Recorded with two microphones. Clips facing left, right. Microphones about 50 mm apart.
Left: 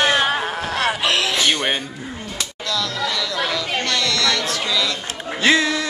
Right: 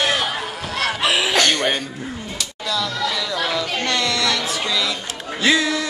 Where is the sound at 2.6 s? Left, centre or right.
Centre.